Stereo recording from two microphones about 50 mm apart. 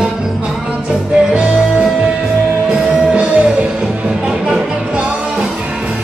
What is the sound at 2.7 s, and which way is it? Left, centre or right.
Music, right.